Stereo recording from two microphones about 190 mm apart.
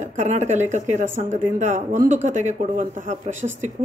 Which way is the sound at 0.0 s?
40° right (ahead or behind).